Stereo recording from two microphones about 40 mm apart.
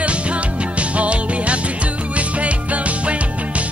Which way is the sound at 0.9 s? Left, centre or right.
Right.